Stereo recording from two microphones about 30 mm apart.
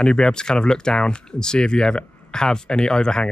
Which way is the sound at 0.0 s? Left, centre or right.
Left.